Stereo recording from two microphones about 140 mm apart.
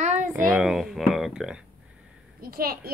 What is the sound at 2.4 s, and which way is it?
Speech, 90° right.